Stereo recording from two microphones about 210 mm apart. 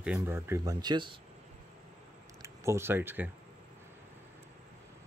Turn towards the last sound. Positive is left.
turn(degrees=-10)  # may be behind; listen again after turning